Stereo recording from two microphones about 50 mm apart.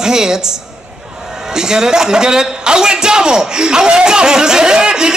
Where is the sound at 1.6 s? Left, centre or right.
Centre.